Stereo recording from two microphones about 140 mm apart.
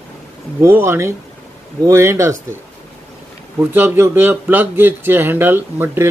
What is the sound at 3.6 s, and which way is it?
Speech, 15° right (ahead or behind).